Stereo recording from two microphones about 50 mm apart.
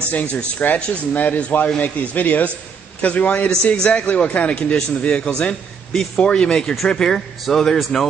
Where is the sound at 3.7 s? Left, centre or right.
Centre.